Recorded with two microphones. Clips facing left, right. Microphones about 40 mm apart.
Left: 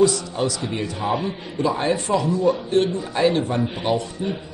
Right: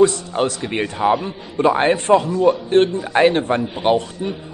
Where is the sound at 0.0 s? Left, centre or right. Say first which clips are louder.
Right 3 dB; right.